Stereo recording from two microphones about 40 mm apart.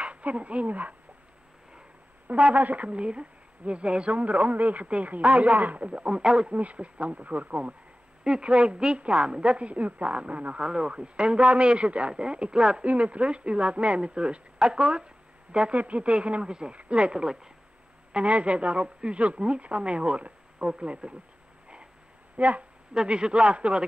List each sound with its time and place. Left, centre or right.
0.0 s speech: right
2.2 s a woman's voice: right
6.5 s a woman's voice: right
8.2 s a woman's voice: right
12.8 s a woman's voice: right
18.1 s a woman's voice: right
22.4 s a woman's voice: right
22.9 s a woman's voice: right